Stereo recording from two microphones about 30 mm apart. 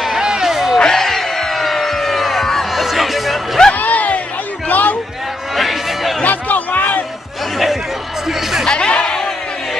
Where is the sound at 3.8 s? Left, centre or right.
Left.